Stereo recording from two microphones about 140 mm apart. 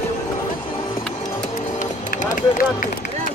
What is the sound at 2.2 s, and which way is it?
Run, 70° left (ahead or behind).